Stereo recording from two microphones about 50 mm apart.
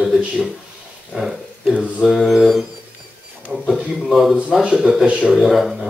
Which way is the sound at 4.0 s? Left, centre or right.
Centre.